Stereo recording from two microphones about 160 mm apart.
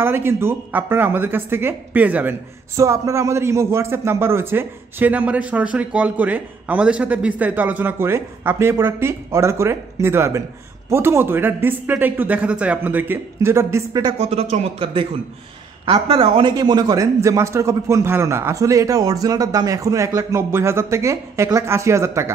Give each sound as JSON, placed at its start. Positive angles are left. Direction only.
{"t": 0.0, "sound": "speech", "side_deg": -15}
{"t": 14.1, "sound": "a man's voice", "side_deg": -40}